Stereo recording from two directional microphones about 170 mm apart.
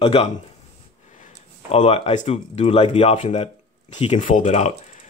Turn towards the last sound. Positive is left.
turn(degrees=45)  # may be behind; listen again after turning